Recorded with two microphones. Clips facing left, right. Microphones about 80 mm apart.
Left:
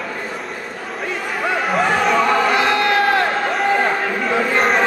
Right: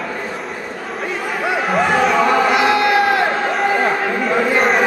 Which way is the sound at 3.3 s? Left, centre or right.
Centre.